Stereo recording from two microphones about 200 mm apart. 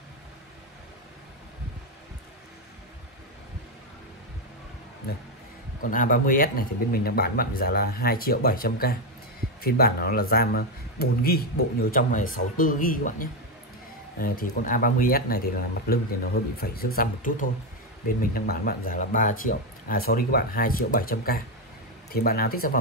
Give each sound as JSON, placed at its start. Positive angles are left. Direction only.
{"t": 5.8, "sound": "speech", "side_deg": 45}